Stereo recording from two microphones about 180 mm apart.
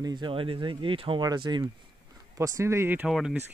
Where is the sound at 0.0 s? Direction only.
25° right (ahead or behind).